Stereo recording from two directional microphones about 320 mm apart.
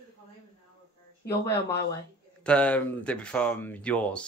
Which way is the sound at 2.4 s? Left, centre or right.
Centre.